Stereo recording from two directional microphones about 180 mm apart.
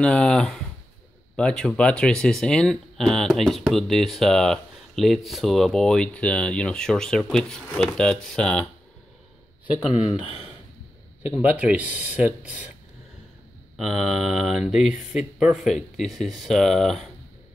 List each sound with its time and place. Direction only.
0.0 s speech: 5° left (ahead or behind)
9.8 s speech: 35° left (ahead or behind)
11.2 s speech: 10° right (ahead or behind)
13.7 s speech: 5° right (ahead or behind)